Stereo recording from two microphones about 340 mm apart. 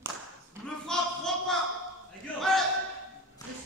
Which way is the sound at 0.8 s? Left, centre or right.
Centre.